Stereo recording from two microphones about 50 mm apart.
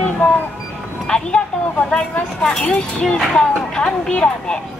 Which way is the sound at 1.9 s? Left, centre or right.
Centre.